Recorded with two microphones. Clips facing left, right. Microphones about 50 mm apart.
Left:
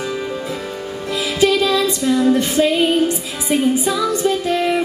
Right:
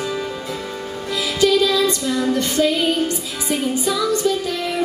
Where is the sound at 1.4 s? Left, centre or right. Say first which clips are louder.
Left 1 dB; left.